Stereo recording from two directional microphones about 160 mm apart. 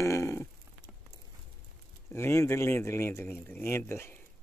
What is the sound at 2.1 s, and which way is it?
Speech, 15° left (ahead or behind).